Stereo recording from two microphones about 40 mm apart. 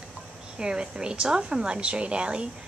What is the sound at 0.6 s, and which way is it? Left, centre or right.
A woman's voice, right.